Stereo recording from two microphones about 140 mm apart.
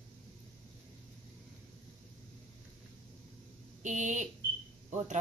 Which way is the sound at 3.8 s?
60° right (ahead or behind).